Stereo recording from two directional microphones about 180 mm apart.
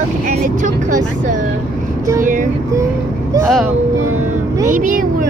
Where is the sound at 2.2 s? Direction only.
45° right (ahead or behind).